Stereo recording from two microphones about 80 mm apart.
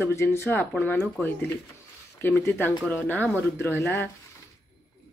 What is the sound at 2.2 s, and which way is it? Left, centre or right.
Speech, left.